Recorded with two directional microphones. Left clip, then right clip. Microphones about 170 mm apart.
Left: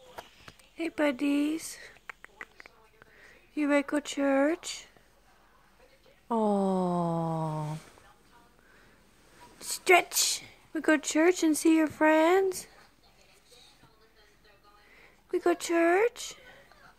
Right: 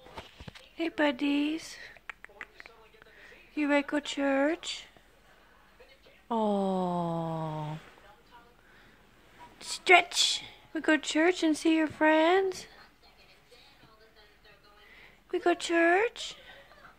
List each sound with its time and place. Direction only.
0.7 s a sound: 15° left (ahead or behind)
3.2 s speech: 20° left (ahead or behind)
6.2 s a woman's voice: 25° left (ahead or behind)
9.6 s a woman's voice: 20° left (ahead or behind)
15.0 s speech: 20° left (ahead or behind)